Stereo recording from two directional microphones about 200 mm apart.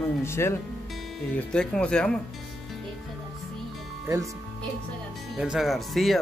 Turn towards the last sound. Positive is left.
turn(degrees=0)  # may be behind; listen again after turning